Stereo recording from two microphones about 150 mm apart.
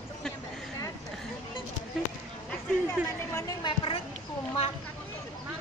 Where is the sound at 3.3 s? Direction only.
20° left (ahead or behind).